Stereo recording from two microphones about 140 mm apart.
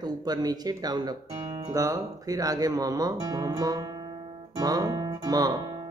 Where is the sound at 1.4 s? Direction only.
40° right (ahead or behind).